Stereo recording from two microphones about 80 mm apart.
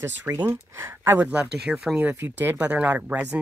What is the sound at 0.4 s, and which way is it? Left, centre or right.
Speech, right.